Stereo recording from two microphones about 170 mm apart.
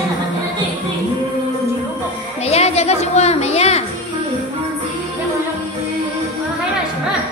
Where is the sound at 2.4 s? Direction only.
40° left (ahead or behind).